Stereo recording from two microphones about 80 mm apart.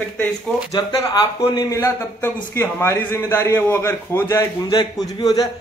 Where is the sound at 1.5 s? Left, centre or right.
Left.